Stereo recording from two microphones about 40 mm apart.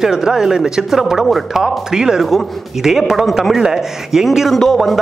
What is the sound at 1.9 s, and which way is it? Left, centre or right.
Speech, centre.